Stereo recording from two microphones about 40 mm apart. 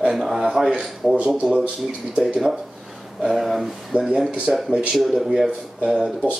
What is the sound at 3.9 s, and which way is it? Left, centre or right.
Speech, right.